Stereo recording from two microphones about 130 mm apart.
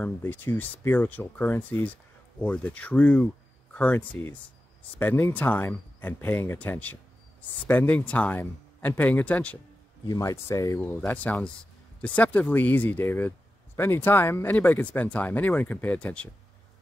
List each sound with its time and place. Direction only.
0.0 s speech: 15° left (ahead or behind)
10.0 s speech: 25° left (ahead or behind)
10.8 s speech: 10° left (ahead or behind)